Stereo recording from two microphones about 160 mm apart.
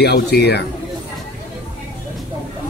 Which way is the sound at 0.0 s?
90° left.